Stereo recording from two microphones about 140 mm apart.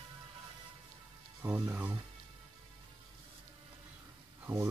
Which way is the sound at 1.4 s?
15° right (ahead or behind).